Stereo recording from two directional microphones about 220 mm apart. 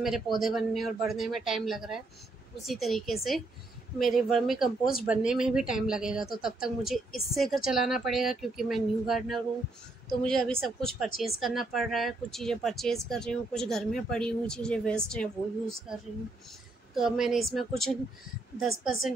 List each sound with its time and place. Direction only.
0.4 s speech: centre (ahead or behind)